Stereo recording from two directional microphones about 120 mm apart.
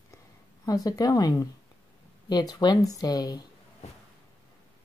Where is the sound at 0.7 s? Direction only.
30° left (ahead or behind).